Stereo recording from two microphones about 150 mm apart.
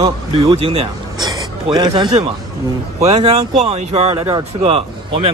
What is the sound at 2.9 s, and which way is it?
Speech, 45° right (ahead or behind).